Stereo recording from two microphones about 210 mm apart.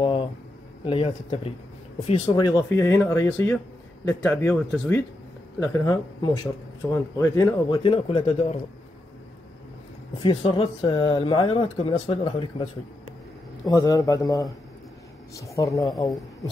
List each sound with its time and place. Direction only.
0.0 s a sound: 25° left (ahead or behind)
0.8 s speech: 25° left (ahead or behind)
7.8 s speech: 25° left (ahead or behind)
10.2 s speech: 25° left (ahead or behind)
13.7 s speech: 20° left (ahead or behind)